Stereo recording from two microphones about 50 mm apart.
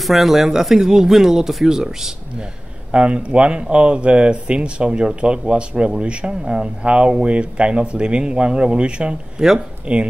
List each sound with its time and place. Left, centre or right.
0.0 s speech: centre
2.9 s speech: right